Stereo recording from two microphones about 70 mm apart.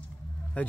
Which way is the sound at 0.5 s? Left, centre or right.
Centre.